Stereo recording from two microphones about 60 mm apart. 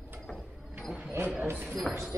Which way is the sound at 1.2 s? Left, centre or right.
Right.